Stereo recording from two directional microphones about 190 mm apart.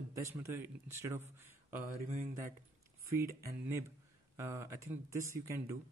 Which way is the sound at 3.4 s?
10° right (ahead or behind).